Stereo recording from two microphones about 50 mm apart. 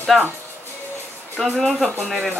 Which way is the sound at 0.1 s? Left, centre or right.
Centre.